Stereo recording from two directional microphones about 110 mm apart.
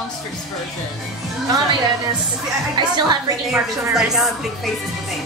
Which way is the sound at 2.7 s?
40° right (ahead or behind).